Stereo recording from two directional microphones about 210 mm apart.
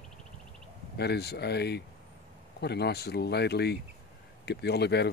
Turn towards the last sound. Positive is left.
turn(degrees=50)  # may be behind; listen again after turning